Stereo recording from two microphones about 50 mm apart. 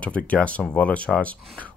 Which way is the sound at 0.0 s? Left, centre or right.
Left.